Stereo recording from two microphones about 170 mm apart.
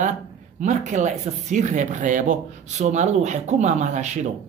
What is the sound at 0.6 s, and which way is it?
A man's voice, 45° right (ahead or behind).